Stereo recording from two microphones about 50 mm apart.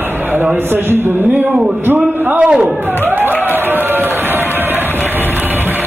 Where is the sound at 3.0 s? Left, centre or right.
Right.